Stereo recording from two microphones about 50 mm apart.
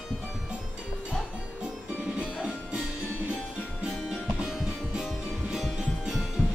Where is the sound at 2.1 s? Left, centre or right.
Centre.